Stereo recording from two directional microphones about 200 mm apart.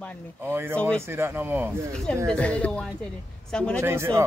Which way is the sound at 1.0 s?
10° right (ahead or behind).